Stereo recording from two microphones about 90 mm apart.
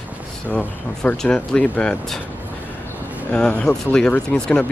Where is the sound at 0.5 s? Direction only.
5° left (ahead or behind).